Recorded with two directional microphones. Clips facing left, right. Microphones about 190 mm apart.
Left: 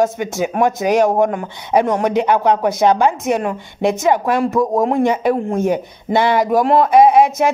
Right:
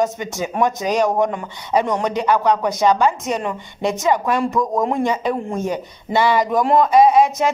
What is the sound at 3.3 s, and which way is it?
Speech, 10° left (ahead or behind).